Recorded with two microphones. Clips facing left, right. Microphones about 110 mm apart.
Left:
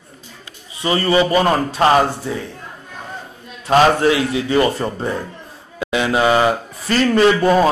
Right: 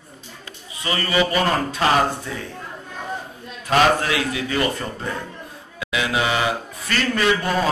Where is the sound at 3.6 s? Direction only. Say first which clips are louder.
Left 5 dB; 30° left (ahead or behind).